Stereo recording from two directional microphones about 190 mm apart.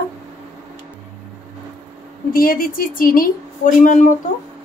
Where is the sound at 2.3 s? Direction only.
50° left (ahead or behind).